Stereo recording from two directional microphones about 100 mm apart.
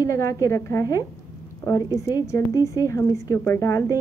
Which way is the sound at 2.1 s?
35° left (ahead or behind).